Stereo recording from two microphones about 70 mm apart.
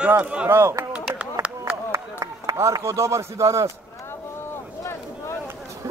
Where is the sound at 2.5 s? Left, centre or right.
Right.